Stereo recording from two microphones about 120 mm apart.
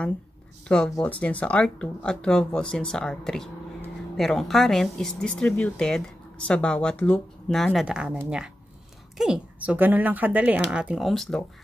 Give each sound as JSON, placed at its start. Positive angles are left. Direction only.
{"t": 0.7, "sound": "speech", "side_deg": 5}
{"t": 7.8, "sound": "speech", "side_deg": -10}
{"t": 9.2, "sound": "speech", "side_deg": -10}